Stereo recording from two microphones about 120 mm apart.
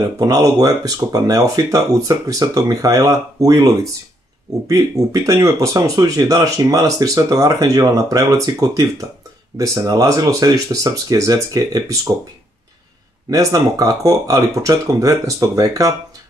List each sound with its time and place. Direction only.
0.2 s speech: 30° right (ahead or behind)
13.3 s speech: 30° right (ahead or behind)